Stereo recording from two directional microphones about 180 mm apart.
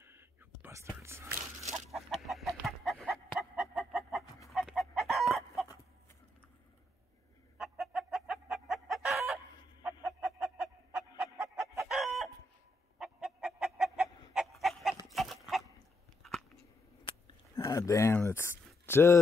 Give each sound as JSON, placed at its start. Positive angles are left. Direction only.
{"t": 0.0, "sound": "whispering", "side_deg": -15}
{"t": 1.9, "sound": "chicken", "side_deg": 0}
{"t": 7.5, "sound": "chicken", "side_deg": 0}
{"t": 10.9, "sound": "chicken", "side_deg": -15}
{"t": 11.8, "sound": "chicken", "side_deg": 0}
{"t": 14.3, "sound": "pig", "side_deg": 0}
{"t": 16.2, "sound": "a sound", "side_deg": 0}
{"t": 17.6, "sound": "a sound", "side_deg": 15}
{"t": 18.9, "sound": "speech", "side_deg": 15}